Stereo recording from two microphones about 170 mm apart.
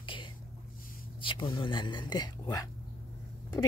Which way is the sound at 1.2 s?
30° left (ahead or behind).